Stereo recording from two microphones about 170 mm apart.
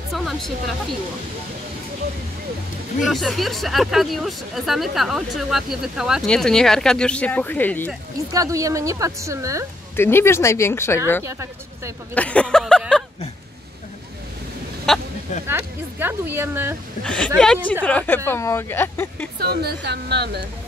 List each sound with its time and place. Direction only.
0.1 s speech: centre (ahead or behind)
3.0 s speech: centre (ahead or behind)
8.3 s a woman's voice: 20° right (ahead or behind)
9.9 s speech: 15° left (ahead or behind)
11.2 s speech: 15° right (ahead or behind)
12.1 s speech: 10° left (ahead or behind)
14.9 s a sound: centre (ahead or behind)
15.4 s speech: 15° right (ahead or behind)
17.0 s speech: 5° left (ahead or behind)
19.4 s speech: 75° right (ahead or behind)